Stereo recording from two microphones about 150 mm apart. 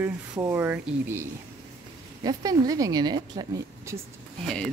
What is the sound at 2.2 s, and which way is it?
A woman's voice, 25° right (ahead or behind).